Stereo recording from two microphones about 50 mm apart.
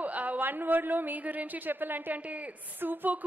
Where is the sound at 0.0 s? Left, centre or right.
Right.